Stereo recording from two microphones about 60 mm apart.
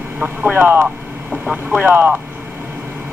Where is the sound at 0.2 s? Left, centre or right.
Right.